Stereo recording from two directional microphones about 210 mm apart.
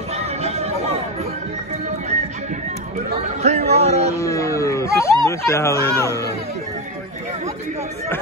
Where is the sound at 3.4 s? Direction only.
30° right (ahead or behind).